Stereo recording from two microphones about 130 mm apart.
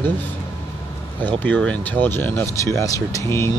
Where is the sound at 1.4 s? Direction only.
10° left (ahead or behind).